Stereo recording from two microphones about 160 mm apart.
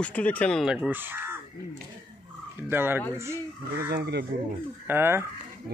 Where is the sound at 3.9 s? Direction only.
90° right.